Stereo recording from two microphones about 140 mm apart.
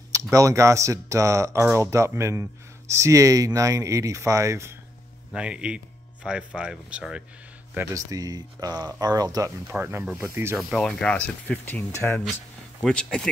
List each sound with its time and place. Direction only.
0.1 s speech: 25° right (ahead or behind)
5.3 s speech: 5° right (ahead or behind)
7.7 s speech: 20° right (ahead or behind)
9.7 s speech: 15° right (ahead or behind)
10.6 s speech: centre (ahead or behind)
12.8 s speech: 5° left (ahead or behind)